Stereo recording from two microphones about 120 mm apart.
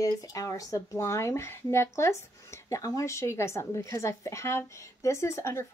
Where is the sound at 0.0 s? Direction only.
30° left (ahead or behind).